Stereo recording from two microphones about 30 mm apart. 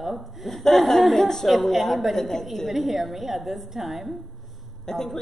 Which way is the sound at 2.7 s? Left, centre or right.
Centre.